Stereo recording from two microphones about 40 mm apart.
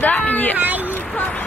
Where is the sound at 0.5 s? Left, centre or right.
Right.